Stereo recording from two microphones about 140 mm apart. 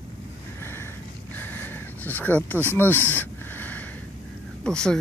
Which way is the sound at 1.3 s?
15° left (ahead or behind).